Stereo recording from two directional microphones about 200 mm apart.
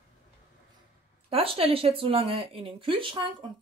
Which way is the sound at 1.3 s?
30° right (ahead or behind).